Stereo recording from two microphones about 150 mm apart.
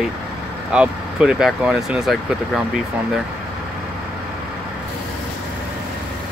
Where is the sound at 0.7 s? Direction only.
5° right (ahead or behind).